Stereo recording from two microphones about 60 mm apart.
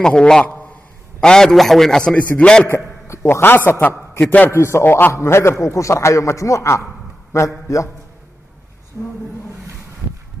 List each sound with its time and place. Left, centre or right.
0.0 s a man's voice: centre
2.7 s a man's voice: left
4.5 s a man's voice: left
9.0 s a woman's voice: centre